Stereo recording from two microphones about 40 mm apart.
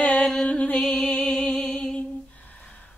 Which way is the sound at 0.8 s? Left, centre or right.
Centre.